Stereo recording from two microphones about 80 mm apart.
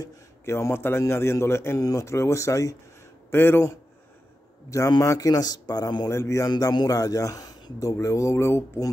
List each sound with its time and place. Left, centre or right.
0.5 s a man's voice: left
1.8 s a man's voice: left
3.3 s speech: left
4.6 s speech: left
6.0 s a man's voice: left
6.5 s speech: left
6.9 s speech: left